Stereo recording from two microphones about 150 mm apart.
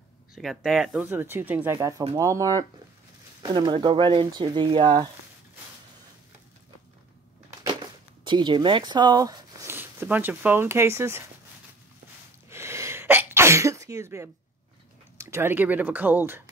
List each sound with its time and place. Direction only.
0.3 s speech: centre (ahead or behind)
1.0 s speech: 15° right (ahead or behind)
1.8 s speech: 25° right (ahead or behind)
8.2 s speech: 30° right (ahead or behind)
12.4 s sneeze: 20° right (ahead or behind)
15.1 s speech: 15° right (ahead or behind)